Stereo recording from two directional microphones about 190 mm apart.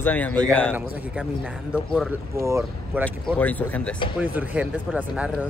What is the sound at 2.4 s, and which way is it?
Speech, 15° right (ahead or behind).